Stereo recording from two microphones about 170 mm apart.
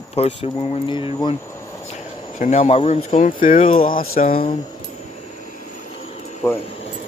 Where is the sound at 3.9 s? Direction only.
55° left (ahead or behind).